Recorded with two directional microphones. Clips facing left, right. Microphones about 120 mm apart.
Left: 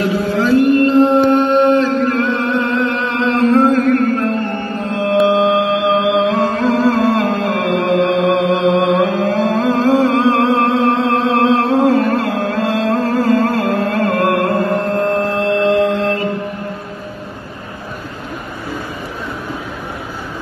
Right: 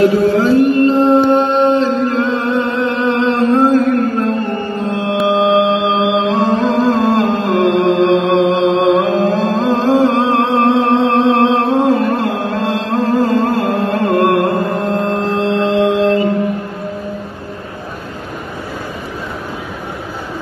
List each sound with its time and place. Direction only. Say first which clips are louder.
0.4 s mantra: left 3 dB; 30° right (ahead or behind)
5.2 s chant: right 2 dB; 20° right (ahead or behind)
15.1 s mantra: even; 25° right (ahead or behind)